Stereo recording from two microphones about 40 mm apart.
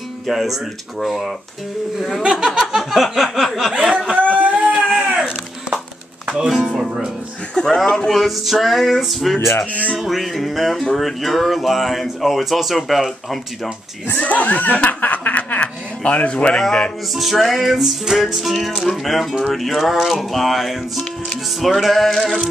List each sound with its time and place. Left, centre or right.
0.3 s music: centre
2.2 s speech: centre
2.9 s music: centre
4.1 s a sound: right
4.9 s wood: centre
6.3 s speech: centre
7.5 s speech: centre
8.1 s music: centre
14.1 s speech: left
15.6 s a sound: left
17.1 s music: centre
22.2 s speech: centre